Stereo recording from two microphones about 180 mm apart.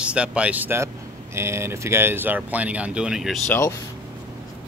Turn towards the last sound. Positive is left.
turn(degrees=15)  # may be behind; listen again after turning